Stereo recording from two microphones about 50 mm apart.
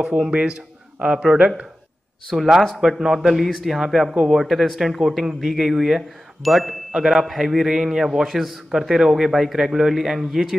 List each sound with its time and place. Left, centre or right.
0.3 s speech: right
2.3 s a man's voice: centre